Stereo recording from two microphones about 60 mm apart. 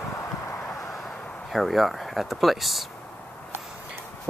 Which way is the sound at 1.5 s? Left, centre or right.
Centre.